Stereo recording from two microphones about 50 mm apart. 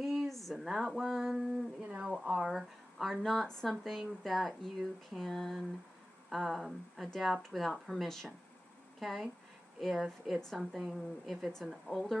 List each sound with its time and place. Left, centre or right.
0.0 s a sound: centre
0.6 s speech: centre
1.8 s speech: right; by 12.2 s centre